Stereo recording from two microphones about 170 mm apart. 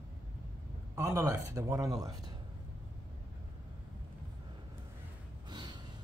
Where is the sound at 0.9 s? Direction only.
15° right (ahead or behind).